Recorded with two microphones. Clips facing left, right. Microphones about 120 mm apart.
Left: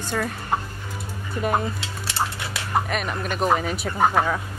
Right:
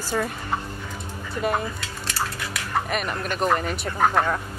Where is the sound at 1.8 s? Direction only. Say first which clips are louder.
Left 2 dB; 25° left (ahead or behind).